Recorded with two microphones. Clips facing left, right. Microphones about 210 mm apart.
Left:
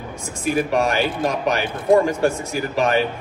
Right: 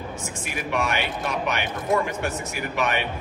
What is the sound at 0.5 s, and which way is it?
A man's voice, 35° left (ahead or behind).